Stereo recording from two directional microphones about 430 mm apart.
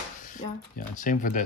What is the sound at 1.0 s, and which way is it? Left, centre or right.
Speech, centre.